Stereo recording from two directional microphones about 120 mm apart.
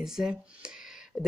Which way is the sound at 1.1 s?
5° left (ahead or behind).